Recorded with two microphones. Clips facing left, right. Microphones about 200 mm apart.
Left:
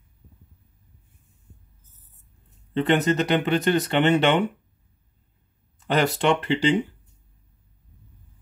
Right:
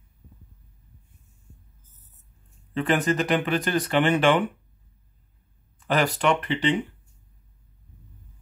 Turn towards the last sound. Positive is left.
turn(degrees=30)  # may be behind; listen again after turning